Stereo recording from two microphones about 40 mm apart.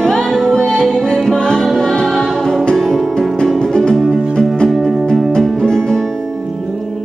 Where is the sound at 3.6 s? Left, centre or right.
Centre.